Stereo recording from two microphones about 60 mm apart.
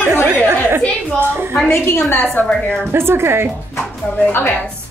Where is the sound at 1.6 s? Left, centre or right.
Left.